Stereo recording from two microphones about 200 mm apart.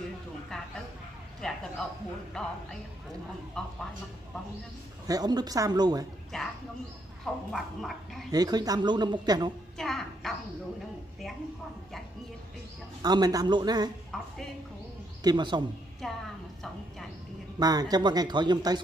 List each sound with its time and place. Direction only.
1.4 s a sound: 5° left (ahead or behind)
2.3 s speech: 5° left (ahead or behind)
3.6 s speech: 5° left (ahead or behind)
5.0 s speech: 20° right (ahead or behind)
6.3 s speech: 5° left (ahead or behind)
7.5 s speech: centre (ahead or behind)
8.3 s speech: 20° right (ahead or behind)
9.8 s a child's voice: centre (ahead or behind)
13.0 s speech: 20° right (ahead or behind)
15.2 s speech: 20° right (ahead or behind)
16.0 s speech: 5° left (ahead or behind)
17.6 s speech: 20° right (ahead or behind)